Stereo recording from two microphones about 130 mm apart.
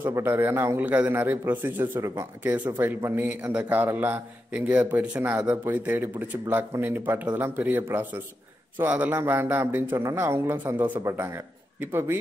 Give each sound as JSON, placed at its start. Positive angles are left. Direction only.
{"t": 0.0, "sound": "a man's voice", "side_deg": -20}